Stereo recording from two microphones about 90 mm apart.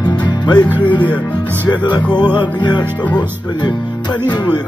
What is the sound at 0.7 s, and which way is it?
Speech, 20° left (ahead or behind).